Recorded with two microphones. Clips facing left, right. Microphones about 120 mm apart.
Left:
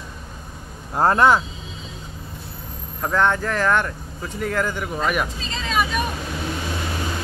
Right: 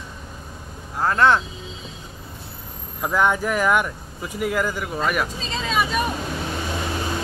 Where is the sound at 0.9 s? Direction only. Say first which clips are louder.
Left 5 dB; 40° left (ahead or behind).